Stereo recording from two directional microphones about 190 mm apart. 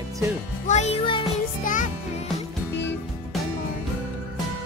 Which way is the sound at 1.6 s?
45° left (ahead or behind).